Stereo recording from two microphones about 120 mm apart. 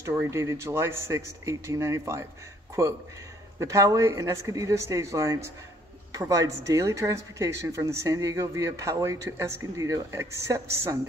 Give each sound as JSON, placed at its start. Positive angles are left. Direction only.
{"t": 0.0, "sound": "speech", "side_deg": -25}
{"t": 3.5, "sound": "speech", "side_deg": -25}